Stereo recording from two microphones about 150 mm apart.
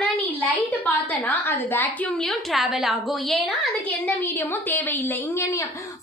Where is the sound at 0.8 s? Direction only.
15° left (ahead or behind).